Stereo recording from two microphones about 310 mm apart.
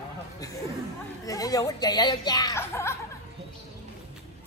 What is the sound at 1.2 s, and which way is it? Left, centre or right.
Speech, centre.